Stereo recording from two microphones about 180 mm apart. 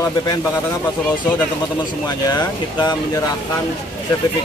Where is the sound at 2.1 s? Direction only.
25° left (ahead or behind).